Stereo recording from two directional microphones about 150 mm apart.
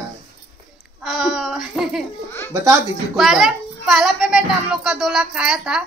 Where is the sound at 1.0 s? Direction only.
Centre (ahead or behind).